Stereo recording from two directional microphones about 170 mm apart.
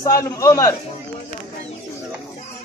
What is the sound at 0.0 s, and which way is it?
Speech, 20° left (ahead or behind).